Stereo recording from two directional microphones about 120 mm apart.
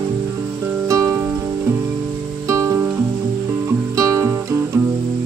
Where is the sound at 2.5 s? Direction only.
25° right (ahead or behind).